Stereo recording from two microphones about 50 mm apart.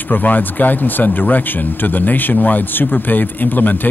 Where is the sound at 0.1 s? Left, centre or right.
Left.